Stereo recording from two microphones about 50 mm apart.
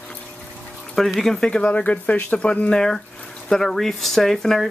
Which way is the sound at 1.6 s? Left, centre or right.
Left.